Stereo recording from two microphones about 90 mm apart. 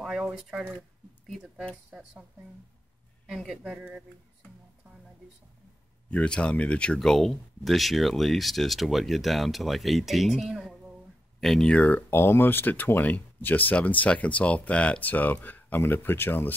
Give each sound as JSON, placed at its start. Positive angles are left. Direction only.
{"t": 0.0, "sound": "speech", "side_deg": 0}
{"t": 1.9, "sound": "speech", "side_deg": -10}
{"t": 3.3, "sound": "speech", "side_deg": -5}
{"t": 6.0, "sound": "speech", "side_deg": 15}
{"t": 11.7, "sound": "speech", "side_deg": 15}